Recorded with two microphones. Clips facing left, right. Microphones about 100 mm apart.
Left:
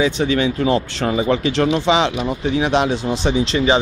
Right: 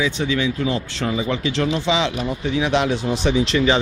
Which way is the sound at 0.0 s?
50° left (ahead or behind).